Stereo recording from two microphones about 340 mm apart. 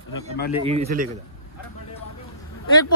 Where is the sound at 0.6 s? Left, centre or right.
Centre.